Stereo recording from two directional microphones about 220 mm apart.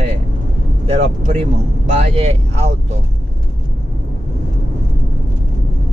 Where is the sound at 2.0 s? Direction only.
30° right (ahead or behind).